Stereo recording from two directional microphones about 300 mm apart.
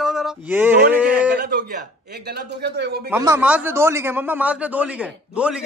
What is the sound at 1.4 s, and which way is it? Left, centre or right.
A man's voice, right.